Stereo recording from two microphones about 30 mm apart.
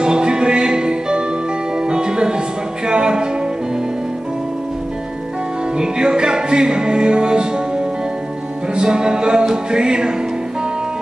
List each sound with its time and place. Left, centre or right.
0.0 s music: right
5.8 s music: right
8.7 s music: right